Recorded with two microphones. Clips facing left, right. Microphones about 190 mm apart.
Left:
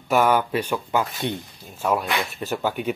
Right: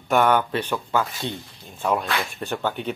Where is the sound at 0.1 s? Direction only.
5° left (ahead or behind).